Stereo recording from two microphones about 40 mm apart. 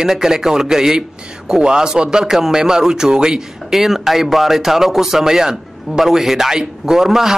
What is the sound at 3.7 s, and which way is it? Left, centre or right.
A man's voice, centre.